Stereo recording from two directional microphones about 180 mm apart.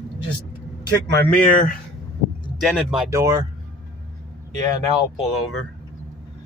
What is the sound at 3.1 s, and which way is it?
Speech, 15° right (ahead or behind).